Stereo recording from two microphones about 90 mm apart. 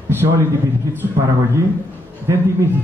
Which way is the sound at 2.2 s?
35° right (ahead or behind).